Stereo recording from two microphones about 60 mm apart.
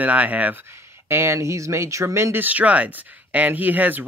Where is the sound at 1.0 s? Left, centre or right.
Right.